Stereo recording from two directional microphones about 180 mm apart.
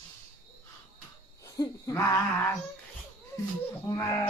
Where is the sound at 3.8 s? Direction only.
20° left (ahead or behind).